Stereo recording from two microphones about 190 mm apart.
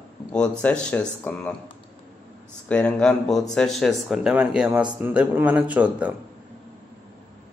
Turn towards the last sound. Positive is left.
turn(degrees=-5)  # may be behind; listen again after turning